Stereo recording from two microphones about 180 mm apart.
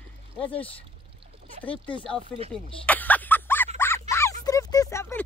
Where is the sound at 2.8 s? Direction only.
10° left (ahead or behind).